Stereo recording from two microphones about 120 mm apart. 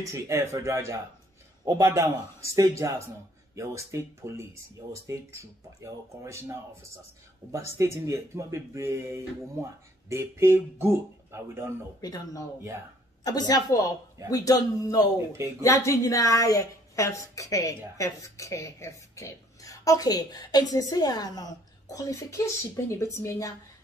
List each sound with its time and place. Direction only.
0.0 s speech: 25° right (ahead or behind)
7.7 s speech: 20° right (ahead or behind)
12.0 s a woman's voice: 30° left (ahead or behind)
15.1 s speech: 20° right (ahead or behind)
15.6 s a woman's voice: 25° left (ahead or behind)